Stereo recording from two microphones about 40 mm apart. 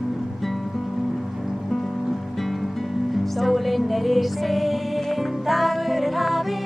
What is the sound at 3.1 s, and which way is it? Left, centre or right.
Music, centre.